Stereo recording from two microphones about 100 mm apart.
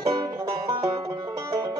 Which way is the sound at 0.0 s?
40° right (ahead or behind).